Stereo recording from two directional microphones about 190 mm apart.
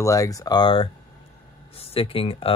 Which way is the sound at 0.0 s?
20° left (ahead or behind).